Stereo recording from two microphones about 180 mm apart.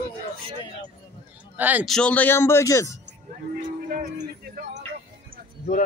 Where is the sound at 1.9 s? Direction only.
5° left (ahead or behind).